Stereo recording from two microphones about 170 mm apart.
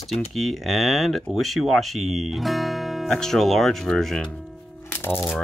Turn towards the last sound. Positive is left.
turn(degrees=10)  # may be behind; listen again after turning